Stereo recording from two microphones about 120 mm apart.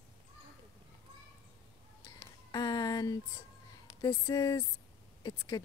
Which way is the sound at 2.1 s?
30° left (ahead or behind).